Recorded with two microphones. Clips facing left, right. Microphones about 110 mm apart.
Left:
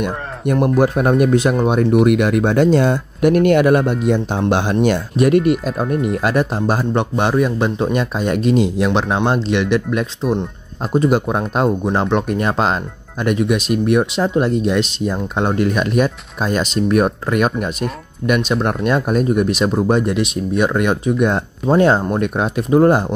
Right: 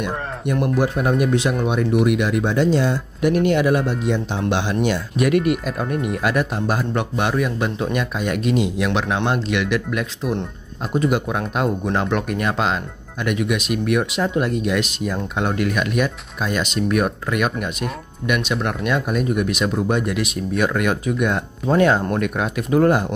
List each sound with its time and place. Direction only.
0.0 s speech: 50° left (ahead or behind)
2.0 s speech: 55° left (ahead or behind)
5.1 s speech: 35° left (ahead or behind)